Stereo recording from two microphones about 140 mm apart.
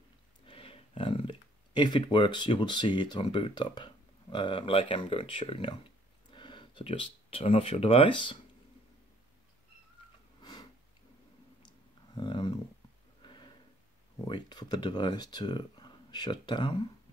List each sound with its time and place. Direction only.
0.5 s speech: 40° left (ahead or behind)
10.4 s sniff: 30° left (ahead or behind)
12.2 s a sound: 35° left (ahead or behind)
14.1 s speech: 30° left (ahead or behind)